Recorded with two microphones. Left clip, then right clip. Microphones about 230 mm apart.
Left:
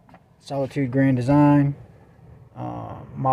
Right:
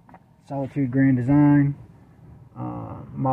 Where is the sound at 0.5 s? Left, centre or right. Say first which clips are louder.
Left 2 dB; centre.